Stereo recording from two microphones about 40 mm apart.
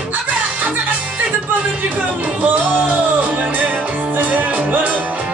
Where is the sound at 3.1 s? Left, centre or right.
Right.